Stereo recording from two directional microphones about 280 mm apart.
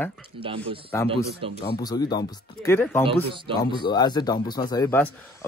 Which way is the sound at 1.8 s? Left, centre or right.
Centre.